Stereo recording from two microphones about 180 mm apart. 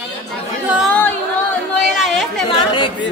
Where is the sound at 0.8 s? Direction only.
10° left (ahead or behind).